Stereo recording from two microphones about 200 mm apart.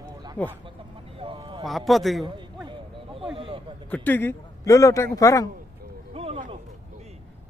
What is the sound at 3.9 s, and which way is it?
A man's voice, 10° left (ahead or behind).